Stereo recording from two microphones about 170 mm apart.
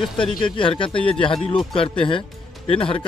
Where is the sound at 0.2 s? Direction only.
30° left (ahead or behind).